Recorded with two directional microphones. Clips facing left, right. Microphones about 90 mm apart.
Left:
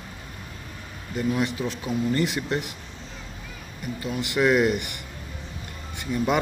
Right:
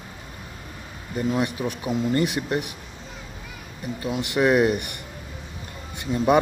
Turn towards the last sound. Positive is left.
turn(degrees=-20)  # may be behind; listen again after turning